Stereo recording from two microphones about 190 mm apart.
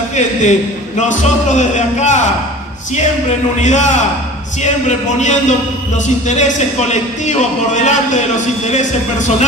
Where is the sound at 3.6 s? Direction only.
40° left (ahead or behind).